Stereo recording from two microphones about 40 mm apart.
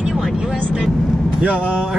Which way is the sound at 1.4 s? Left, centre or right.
Right.